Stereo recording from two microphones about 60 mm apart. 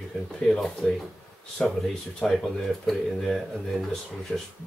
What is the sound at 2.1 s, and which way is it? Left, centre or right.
Speech, centre.